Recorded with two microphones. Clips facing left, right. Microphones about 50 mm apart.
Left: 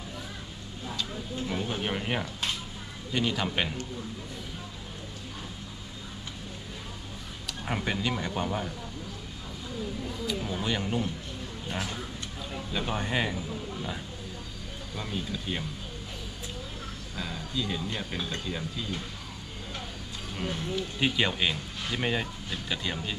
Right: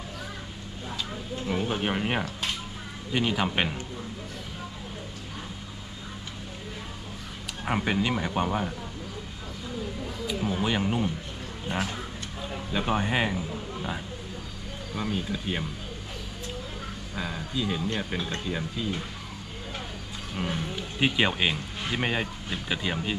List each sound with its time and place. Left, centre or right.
1.5 s speech: centre
7.6 s speech: centre
10.2 s speech: centre
15.0 s speech: centre
17.1 s speech: centre
20.3 s speech: centre